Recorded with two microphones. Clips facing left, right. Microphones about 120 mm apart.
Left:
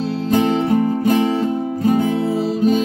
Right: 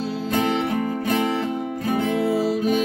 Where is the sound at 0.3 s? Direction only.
30° left (ahead or behind).